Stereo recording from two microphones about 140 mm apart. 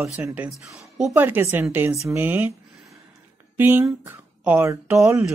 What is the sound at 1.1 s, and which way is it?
Speech, 15° right (ahead or behind).